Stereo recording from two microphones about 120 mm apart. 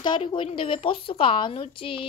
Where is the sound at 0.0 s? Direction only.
40° left (ahead or behind).